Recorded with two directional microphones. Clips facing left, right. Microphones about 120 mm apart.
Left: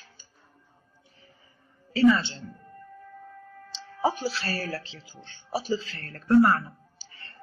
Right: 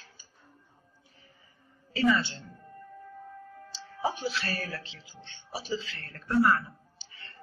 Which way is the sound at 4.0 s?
40° left (ahead or behind).